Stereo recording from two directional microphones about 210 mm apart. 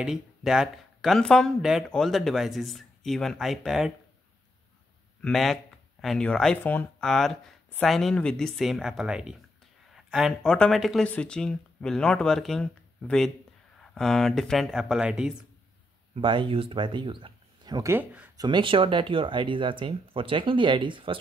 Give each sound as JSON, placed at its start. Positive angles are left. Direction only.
{"t": 0.0, "sound": "speech", "side_deg": 0}
{"t": 5.2, "sound": "speech", "side_deg": 0}
{"t": 16.2, "sound": "speech", "side_deg": -25}
{"t": 18.4, "sound": "speech", "side_deg": -20}